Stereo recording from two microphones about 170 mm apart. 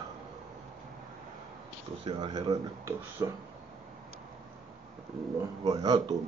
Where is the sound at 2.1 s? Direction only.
25° right (ahead or behind).